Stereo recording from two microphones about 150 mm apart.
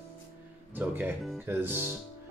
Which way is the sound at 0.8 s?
10° right (ahead or behind).